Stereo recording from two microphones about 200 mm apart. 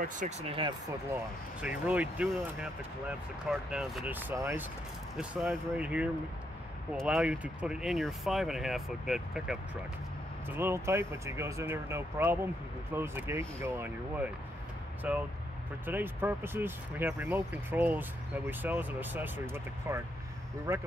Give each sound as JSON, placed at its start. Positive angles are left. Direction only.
{"t": 0.0, "sound": "speech", "side_deg": -35}
{"t": 1.9, "sound": "speech", "side_deg": -5}